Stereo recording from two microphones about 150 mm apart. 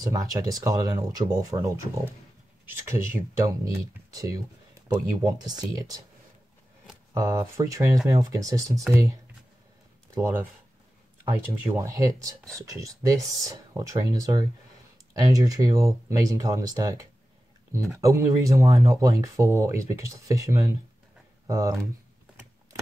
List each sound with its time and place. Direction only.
0.0 s speech: 25° right (ahead or behind)
7.2 s speech: 20° right (ahead or behind)
10.1 s speech: 20° right (ahead or behind)